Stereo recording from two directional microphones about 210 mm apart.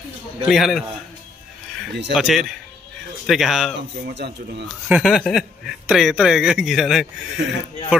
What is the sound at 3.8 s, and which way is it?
Speech, 55° right (ahead or behind).